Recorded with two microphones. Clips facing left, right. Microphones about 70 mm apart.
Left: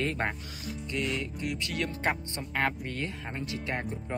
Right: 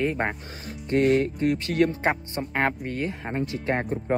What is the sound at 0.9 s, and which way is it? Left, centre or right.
Speech, right.